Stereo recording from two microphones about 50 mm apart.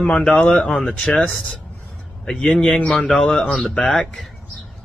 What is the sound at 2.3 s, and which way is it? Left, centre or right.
Speech, centre.